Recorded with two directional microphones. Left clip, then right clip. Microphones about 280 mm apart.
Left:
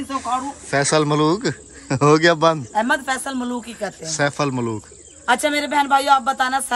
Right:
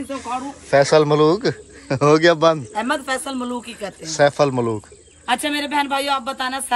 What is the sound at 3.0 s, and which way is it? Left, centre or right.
Speech, left.